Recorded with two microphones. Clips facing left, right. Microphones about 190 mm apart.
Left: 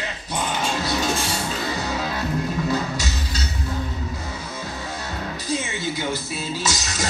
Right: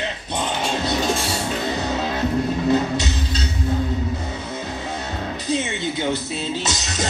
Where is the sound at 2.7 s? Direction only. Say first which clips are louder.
Right 5 dB; 25° right (ahead or behind).